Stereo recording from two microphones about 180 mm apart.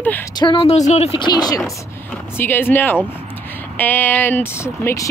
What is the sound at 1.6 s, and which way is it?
Speech, 10° left (ahead or behind).